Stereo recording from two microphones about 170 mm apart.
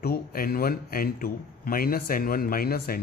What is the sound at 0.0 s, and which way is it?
Speech, 60° left (ahead or behind).